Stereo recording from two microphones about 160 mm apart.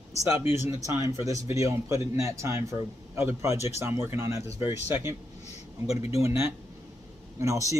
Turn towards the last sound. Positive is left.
turn(degrees=-20)  # may be behind; listen again after turning